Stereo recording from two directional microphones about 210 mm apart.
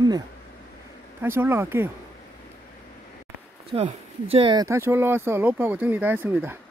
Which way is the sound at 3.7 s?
25° right (ahead or behind).